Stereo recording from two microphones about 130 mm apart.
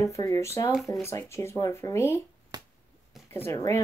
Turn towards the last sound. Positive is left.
turn(degrees=20)  # may be behind; listen again after turning